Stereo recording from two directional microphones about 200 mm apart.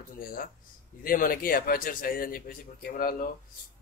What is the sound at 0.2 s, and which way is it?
A man's voice, 45° left (ahead or behind).